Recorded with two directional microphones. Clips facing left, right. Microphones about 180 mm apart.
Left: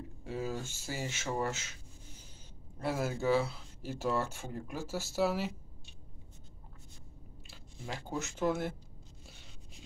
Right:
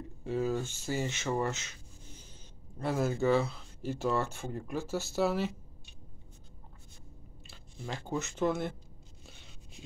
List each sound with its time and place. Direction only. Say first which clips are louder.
0.2 s speech: right 6 dB; 5° left (ahead or behind)
2.8 s speech: right 3 dB; 5° left (ahead or behind)
7.8 s speech: right 3 dB; 5° left (ahead or behind)